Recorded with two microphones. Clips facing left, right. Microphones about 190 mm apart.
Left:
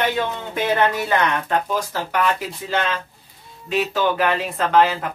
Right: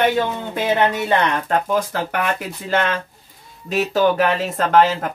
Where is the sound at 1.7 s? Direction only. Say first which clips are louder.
Right 4 dB; 55° right (ahead or behind).